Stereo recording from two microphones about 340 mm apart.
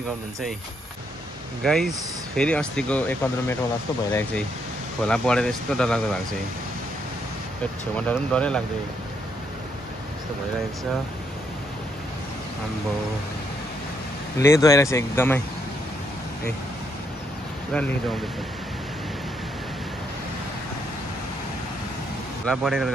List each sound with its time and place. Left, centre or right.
1.6 s speech: centre
5.0 s speech: centre
7.9 s speech: centre
14.4 s speech: centre
22.5 s speech: centre